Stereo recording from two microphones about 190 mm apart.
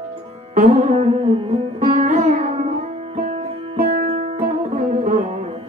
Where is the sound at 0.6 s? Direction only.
35° right (ahead or behind).